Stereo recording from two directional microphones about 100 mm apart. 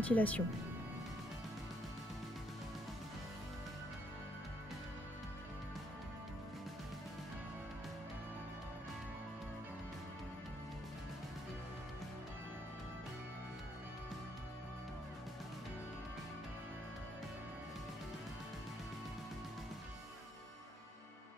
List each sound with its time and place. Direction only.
0.0 s speech: 15° left (ahead or behind)